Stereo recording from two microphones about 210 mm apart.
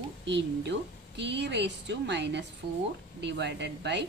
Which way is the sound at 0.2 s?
55° right (ahead or behind).